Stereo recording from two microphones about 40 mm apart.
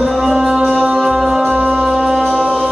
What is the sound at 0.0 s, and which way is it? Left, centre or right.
Music, centre.